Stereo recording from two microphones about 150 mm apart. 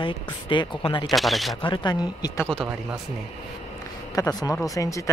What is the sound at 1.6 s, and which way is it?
Speech, 30° left (ahead or behind).